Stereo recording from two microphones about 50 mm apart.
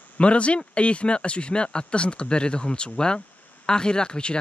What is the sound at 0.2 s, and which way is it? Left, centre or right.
Speech, left.